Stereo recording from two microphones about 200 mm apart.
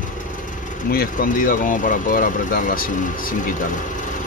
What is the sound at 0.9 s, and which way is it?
Speech, 45° left (ahead or behind).